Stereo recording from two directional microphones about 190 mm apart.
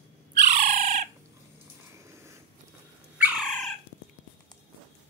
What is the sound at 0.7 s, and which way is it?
Bird, 40° right (ahead or behind).